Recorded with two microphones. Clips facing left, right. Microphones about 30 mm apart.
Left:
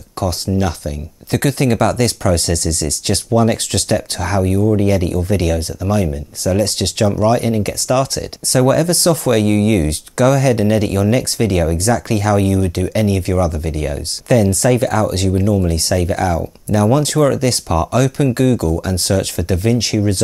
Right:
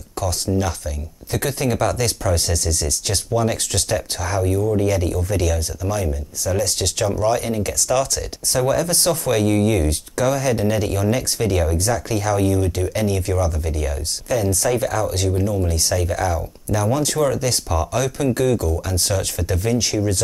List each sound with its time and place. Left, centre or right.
0.2 s speech: left
1.3 s speech: left
4.4 s speech: left
7.3 s speech: left
8.5 s speech: left
9.5 s speech: left
9.8 s speech: left
11.8 s speech: left